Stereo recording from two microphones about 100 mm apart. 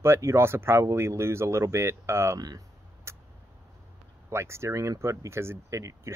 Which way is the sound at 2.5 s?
35° right (ahead or behind).